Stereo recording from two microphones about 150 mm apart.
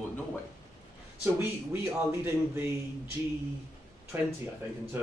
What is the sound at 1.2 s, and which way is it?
A man's voice, 15° right (ahead or behind).